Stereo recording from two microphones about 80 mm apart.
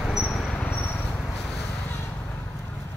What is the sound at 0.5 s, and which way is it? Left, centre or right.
Cricket, centre.